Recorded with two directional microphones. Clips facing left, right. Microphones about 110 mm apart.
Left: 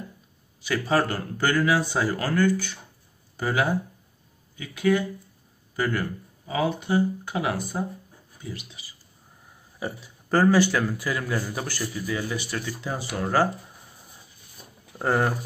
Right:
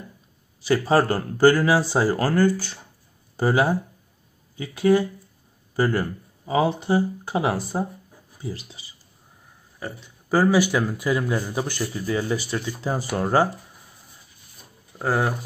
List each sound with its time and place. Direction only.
0.6 s a man's voice: 35° right (ahead or behind)
9.8 s speech: 5° left (ahead or behind)
10.3 s a man's voice: 10° right (ahead or behind)
12.1 s speech: 30° right (ahead or behind)
12.8 s a man's voice: 35° right (ahead or behind)
15.0 s speech: 5° right (ahead or behind)